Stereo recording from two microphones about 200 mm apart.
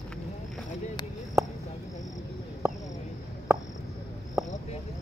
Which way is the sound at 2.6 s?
15° right (ahead or behind).